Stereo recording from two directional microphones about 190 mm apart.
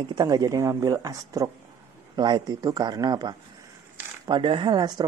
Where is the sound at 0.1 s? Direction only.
20° right (ahead or behind).